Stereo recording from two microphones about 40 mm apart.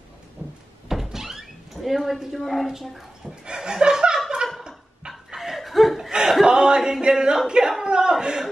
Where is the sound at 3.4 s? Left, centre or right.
Centre.